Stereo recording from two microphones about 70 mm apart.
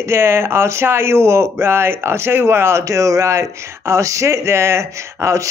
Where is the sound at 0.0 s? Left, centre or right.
Right.